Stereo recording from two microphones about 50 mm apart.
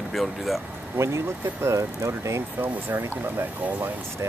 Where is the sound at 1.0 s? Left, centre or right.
Right.